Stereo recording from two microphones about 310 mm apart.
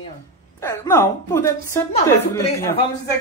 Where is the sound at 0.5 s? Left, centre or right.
Centre.